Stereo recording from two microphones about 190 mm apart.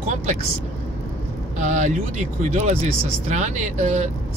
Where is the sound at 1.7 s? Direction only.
40° right (ahead or behind).